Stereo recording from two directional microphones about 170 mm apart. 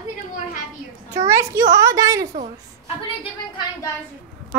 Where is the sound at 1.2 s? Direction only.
15° right (ahead or behind).